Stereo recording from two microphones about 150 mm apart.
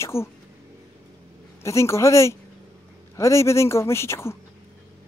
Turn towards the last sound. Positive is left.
turn(degrees=15)  # may be behind; listen again after turning